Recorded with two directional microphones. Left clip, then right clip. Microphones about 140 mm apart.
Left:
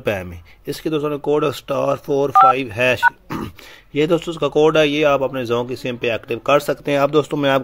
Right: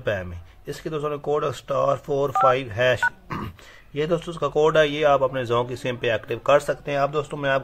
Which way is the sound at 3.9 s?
40° left (ahead or behind).